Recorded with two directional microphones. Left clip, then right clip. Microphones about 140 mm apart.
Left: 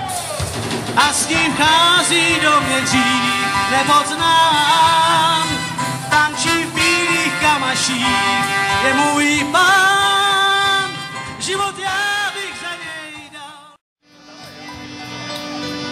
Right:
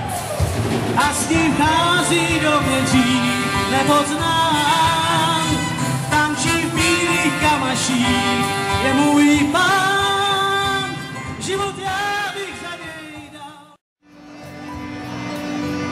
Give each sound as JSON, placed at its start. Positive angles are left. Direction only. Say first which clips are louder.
{"t": 0.9, "sound": "music", "louder": "left 4 dB", "side_deg": 40}
{"t": 5.4, "sound": "music", "louder": "left 1 dB", "side_deg": 5}
{"t": 6.4, "sound": "music", "louder": "left 2 dB", "side_deg": 30}